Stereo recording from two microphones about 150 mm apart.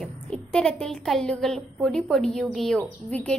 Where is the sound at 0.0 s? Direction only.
5° left (ahead or behind).